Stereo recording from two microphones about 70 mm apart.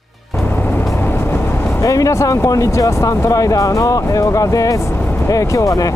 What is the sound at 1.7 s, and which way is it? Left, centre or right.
Speech, left.